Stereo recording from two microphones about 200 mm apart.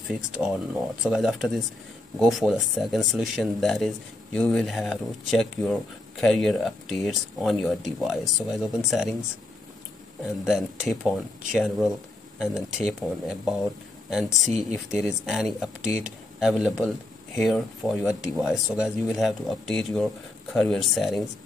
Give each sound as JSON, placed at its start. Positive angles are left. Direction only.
{"t": 0.1, "sound": "speech", "side_deg": -5}
{"t": 10.4, "sound": "speech", "side_deg": 0}
{"t": 14.6, "sound": "speech", "side_deg": 0}